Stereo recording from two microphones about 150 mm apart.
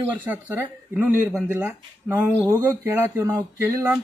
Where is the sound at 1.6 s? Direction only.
10° right (ahead or behind).